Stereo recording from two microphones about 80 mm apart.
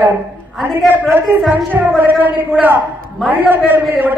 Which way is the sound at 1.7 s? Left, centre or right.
Right.